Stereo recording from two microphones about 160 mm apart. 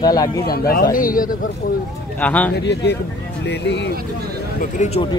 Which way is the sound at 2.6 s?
90° left.